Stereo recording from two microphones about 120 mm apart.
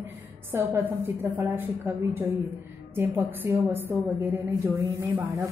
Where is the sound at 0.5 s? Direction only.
20° right (ahead or behind).